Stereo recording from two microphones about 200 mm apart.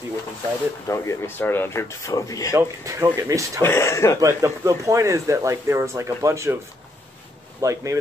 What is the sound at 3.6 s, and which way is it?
Speech, 15° left (ahead or behind).